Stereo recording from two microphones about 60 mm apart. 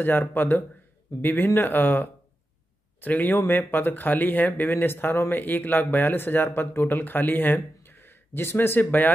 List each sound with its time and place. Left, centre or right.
0.0 s speech: left